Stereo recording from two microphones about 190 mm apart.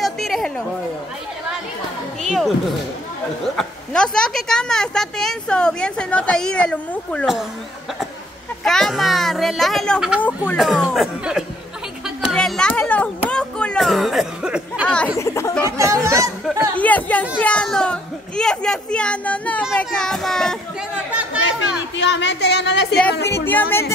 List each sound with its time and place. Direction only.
0.0 s a sound: centre (ahead or behind)
2.2 s speech: centre (ahead or behind)
3.5 s a woman's voice: 5° left (ahead or behind)
8.6 s a woman's voice: centre (ahead or behind)
15.1 s speech: 15° left (ahead or behind)
15.6 s speech: 15° right (ahead or behind)
16.7 s a woman's voice: 10° left (ahead or behind); by 21.4 s 10° right (ahead or behind)
21.9 s a woman's voice: 65° left (ahead or behind)
23.3 s speech: 10° left (ahead or behind)